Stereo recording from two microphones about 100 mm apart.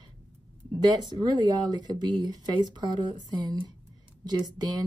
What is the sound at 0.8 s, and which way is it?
Speech, 45° right (ahead or behind).